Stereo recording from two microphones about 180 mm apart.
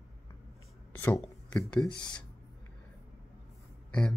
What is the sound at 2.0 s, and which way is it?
Speech, 25° left (ahead or behind).